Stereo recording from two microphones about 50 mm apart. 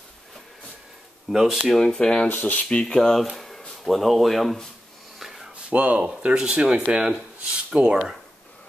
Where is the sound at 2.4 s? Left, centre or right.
Left.